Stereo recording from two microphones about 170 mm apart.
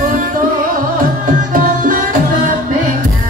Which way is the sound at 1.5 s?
55° right (ahead or behind).